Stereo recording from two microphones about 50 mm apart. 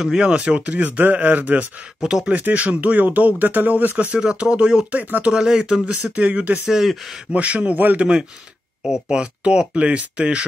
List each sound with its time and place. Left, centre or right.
0.0 s speech: centre
2.0 s speech: centre
2.2 s speech: right
3.9 s speech: right
5.9 s speech: right
6.6 s speech: centre
7.3 s speech: right